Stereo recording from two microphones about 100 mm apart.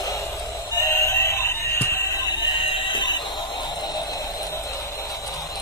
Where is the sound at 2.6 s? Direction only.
55° left (ahead or behind).